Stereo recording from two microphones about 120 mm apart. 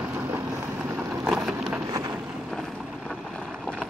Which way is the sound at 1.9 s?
30° right (ahead or behind).